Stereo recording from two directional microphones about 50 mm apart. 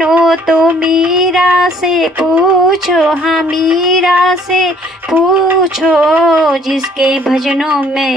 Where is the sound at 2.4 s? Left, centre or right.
Centre.